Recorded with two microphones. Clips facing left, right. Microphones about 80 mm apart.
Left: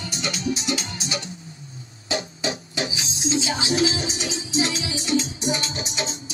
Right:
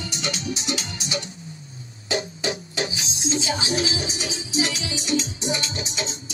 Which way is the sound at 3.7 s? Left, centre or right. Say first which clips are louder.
Left 3 dB; left.